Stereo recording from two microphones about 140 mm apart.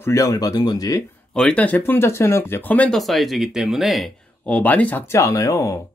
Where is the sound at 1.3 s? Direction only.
5° left (ahead or behind).